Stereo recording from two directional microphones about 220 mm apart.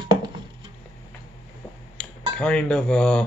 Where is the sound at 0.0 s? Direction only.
20° right (ahead or behind).